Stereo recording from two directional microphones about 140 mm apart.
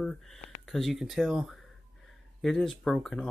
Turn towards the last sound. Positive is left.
turn(degrees=5)  # may be behind; listen again after turning